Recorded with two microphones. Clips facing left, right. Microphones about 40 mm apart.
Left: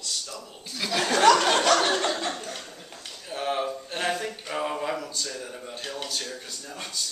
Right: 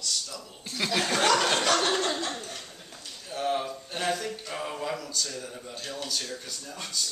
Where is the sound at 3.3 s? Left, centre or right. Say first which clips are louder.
Left 1 dB; centre.